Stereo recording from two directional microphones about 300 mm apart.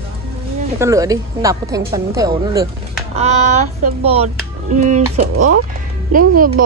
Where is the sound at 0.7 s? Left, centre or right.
Centre.